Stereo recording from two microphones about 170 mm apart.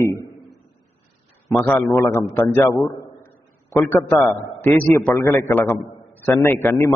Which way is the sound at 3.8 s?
10° left (ahead or behind).